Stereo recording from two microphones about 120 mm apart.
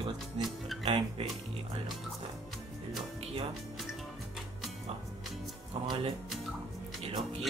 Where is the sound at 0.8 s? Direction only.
55° right (ahead or behind).